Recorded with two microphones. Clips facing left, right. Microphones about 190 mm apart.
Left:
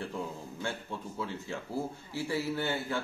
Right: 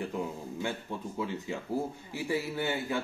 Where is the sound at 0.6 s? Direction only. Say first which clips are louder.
Right 2 dB; 15° right (ahead or behind).